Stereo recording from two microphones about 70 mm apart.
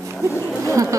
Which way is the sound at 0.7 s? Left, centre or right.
Right.